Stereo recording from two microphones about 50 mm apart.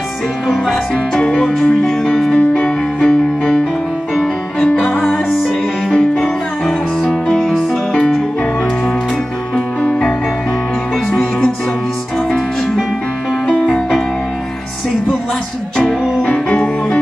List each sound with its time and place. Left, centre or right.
0.5 s music: centre
2.3 s music: left
5.1 s music: centre
5.9 s music: centre
7.0 s music: centre
11.1 s music: centre
15.8 s music: centre